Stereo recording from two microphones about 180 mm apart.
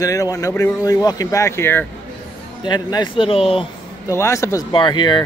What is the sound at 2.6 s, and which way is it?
Speech, 25° left (ahead or behind).